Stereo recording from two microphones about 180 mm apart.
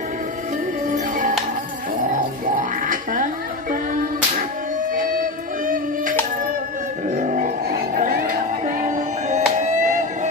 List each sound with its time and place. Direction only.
0.8 s music: 45° right (ahead or behind)
4.9 s music: 50° right (ahead or behind)
7.1 s vehicle: 45° right (ahead or behind)
8.8 s music: 40° right (ahead or behind)